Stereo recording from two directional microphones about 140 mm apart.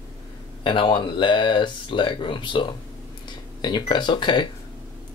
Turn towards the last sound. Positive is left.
turn(degrees=35)  # may be behind; listen again after turning